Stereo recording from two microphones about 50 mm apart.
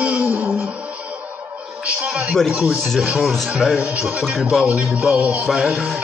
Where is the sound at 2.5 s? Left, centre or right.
Right.